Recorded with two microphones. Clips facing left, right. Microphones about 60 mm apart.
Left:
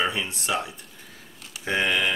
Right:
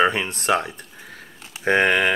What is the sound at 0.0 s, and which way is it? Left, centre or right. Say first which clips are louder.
Speech: right 7 dB; right.